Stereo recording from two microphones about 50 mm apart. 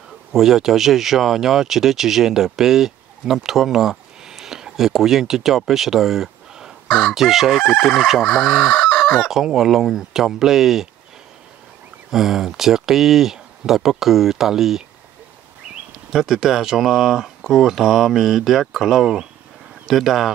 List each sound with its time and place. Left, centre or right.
0.3 s speech: centre
7.8 s chicken: centre
8.7 s chicken: left
9.1 s speech: centre
12.1 s speech: centre
16.1 s speech: centre
19.9 s chicken: centre